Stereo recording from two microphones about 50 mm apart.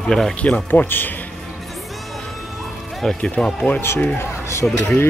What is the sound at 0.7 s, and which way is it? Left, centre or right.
Speech, left.